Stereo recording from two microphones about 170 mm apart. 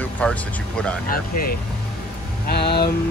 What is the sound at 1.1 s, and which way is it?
Speech, 60° left (ahead or behind).